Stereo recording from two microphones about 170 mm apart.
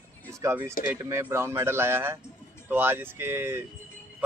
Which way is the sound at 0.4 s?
15° right (ahead or behind).